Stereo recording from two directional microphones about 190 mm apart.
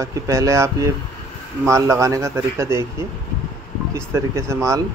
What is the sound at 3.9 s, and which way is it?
Speech, 15° right (ahead or behind).